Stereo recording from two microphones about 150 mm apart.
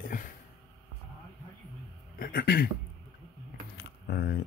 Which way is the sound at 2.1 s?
85° left.